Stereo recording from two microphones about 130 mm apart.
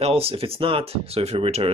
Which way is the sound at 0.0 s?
50° right (ahead or behind).